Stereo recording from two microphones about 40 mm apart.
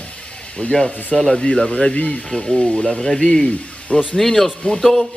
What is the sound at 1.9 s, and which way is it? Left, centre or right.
Speech, left.